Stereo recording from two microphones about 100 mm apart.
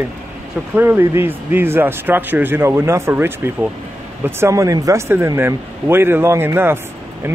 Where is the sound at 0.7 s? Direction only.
25° right (ahead or behind).